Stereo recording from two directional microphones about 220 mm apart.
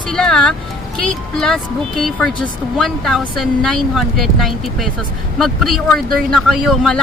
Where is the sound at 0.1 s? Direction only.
5° left (ahead or behind).